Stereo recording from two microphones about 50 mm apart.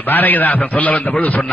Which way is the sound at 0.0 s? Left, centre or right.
Left.